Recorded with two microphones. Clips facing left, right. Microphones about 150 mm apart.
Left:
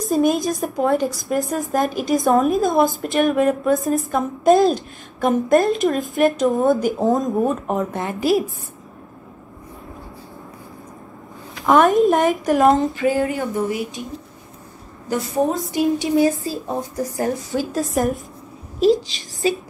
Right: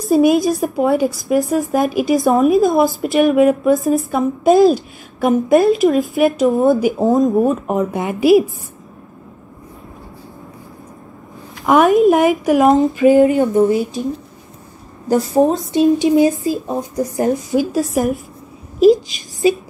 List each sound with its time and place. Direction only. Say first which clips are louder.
0.1 s a woman's voice: right 6 dB; centre (ahead or behind)
7.9 s a woman's voice: right 6 dB; 15° right (ahead or behind)
11.6 s a woman's voice: right 3 dB; centre (ahead or behind)
13.0 s speech: right 9 dB; 20° right (ahead or behind)
15.1 s a woman's voice: right 8 dB; 35° right (ahead or behind)
15.7 s speech: right 6 dB; 20° right (ahead or behind)
17.7 s a woman's voice: right 3 dB; centre (ahead or behind)
19.4 s a woman's voice: right 6 dB; 10° right (ahead or behind)